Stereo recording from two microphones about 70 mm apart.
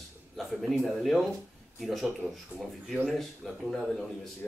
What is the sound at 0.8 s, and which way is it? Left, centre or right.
Mantra, centre.